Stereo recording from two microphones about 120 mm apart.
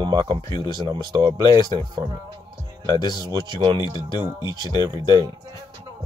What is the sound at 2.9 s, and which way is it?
Speech, 35° left (ahead or behind).